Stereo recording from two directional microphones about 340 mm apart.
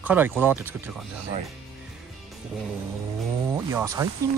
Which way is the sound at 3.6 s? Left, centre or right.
Centre.